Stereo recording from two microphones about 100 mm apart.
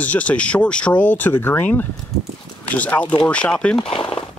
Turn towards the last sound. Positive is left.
turn(degrees=55)  # may be behind; listen again after turning